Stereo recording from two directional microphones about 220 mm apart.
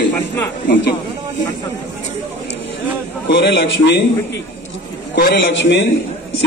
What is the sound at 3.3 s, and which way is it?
Speech, 55° left (ahead or behind).